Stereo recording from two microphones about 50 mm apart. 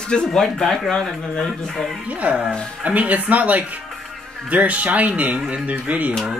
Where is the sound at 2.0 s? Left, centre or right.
Right.